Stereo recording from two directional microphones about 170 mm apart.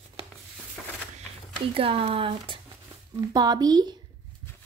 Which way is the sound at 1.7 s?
35° right (ahead or behind).